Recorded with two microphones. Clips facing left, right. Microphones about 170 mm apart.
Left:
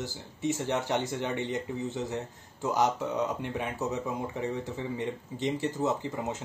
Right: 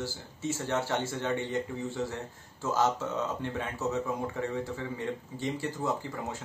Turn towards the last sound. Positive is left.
turn(degrees=20)  # may be behind; listen again after turning